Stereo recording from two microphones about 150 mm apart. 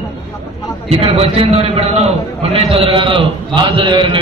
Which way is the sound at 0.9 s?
40° right (ahead or behind).